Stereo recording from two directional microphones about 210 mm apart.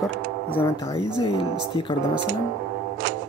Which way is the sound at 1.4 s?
25° left (ahead or behind).